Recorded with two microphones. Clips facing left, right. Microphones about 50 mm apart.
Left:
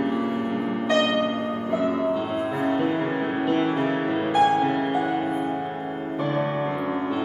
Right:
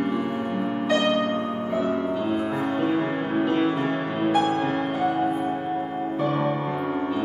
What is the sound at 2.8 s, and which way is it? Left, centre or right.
Music, left.